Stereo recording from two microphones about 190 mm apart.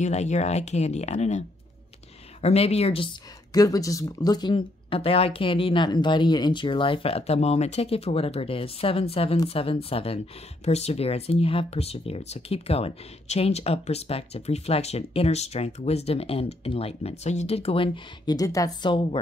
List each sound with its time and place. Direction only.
0.0 s speech: 35° left (ahead or behind)
2.4 s speech: 35° left (ahead or behind)
3.5 s speech: 20° left (ahead or behind)